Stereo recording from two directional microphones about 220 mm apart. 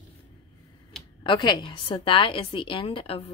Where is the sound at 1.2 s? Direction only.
20° left (ahead or behind).